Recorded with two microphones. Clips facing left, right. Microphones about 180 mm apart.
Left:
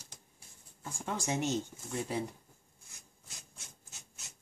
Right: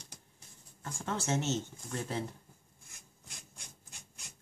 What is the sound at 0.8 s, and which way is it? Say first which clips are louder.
Speech: right 1 dB; 15° left (ahead or behind).